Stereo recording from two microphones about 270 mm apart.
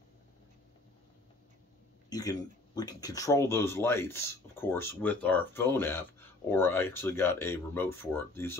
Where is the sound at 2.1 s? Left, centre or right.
Centre.